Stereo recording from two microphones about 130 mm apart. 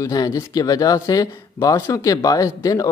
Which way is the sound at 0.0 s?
30° left (ahead or behind).